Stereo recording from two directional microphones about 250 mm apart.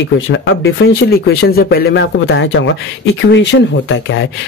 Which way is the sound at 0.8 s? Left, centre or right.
Left.